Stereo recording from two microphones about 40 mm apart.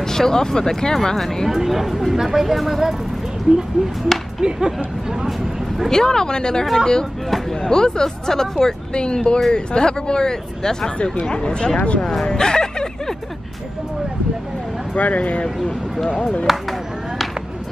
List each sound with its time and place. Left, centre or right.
0.0 s speech: centre
1.5 s speech: centre
4.4 s speech: centre
5.9 s speech: centre
6.6 s speech: centre
7.6 s speech: centre
12.0 s a sound: centre
15.0 s speech: left
15.4 s speech: centre
16.1 s speech: left